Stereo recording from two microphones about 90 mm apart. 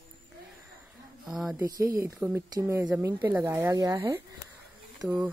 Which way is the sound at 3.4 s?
35° right (ahead or behind).